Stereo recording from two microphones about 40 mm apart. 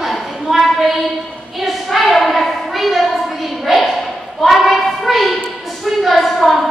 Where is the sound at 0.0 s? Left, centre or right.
Centre.